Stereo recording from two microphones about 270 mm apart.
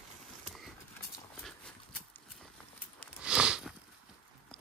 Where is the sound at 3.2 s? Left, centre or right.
Centre.